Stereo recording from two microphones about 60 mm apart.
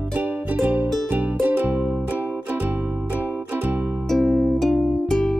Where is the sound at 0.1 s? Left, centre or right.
Right.